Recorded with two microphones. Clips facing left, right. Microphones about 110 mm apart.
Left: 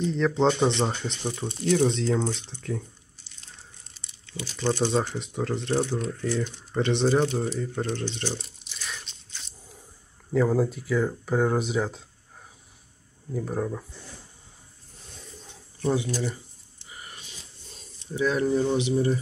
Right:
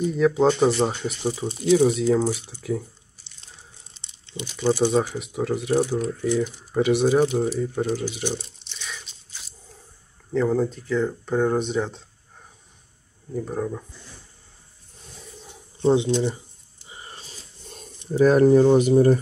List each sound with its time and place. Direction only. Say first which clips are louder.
0.0 s speech: right 4 dB; 5° right (ahead or behind)
3.9 s crumpling: right 2 dB; 25° right (ahead or behind)
4.6 s speech: right 4 dB; 10° right (ahead or behind)
8.4 s crunch: right 1 dB; centre (ahead or behind)
10.3 s speech: right 1 dB; 5° left (ahead or behind)
13.3 s speech: right 2 dB; centre (ahead or behind)
15.4 s a sound: right 7 dB; 20° right (ahead or behind); by 17.9 s 50° right (ahead or behind)
18.1 s speech: right 9 dB; 45° right (ahead or behind)